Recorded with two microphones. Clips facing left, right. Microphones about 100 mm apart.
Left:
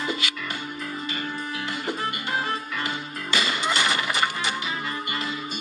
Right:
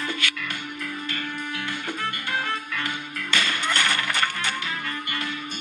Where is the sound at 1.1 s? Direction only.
30° left (ahead or behind).